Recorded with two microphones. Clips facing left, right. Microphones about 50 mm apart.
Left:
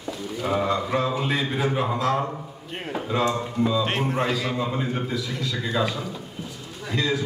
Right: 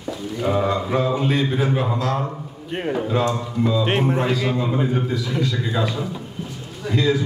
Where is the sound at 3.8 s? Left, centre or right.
Right.